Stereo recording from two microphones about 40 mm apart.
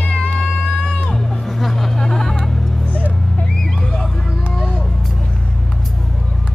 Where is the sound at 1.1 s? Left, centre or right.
Centre.